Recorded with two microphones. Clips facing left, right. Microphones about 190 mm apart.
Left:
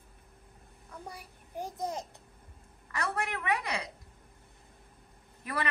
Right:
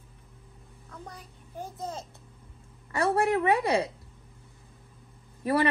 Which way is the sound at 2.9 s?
30° right (ahead or behind).